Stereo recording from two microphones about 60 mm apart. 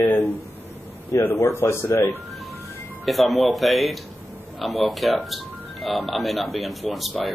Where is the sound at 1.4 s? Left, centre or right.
Left.